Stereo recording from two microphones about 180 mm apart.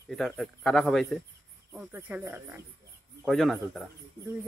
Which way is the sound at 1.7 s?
10° right (ahead or behind).